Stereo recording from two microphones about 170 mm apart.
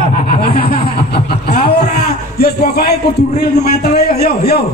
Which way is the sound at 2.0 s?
70° left (ahead or behind).